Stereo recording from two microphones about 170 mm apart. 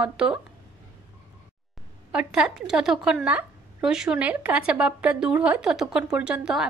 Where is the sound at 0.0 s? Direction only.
5° right (ahead or behind).